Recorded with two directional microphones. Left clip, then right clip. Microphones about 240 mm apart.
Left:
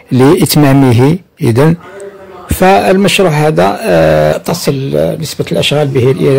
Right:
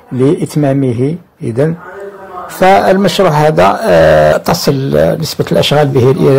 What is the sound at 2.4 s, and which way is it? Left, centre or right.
Speech, left.